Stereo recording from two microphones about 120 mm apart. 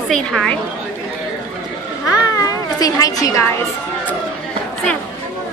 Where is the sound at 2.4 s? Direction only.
30° left (ahead or behind).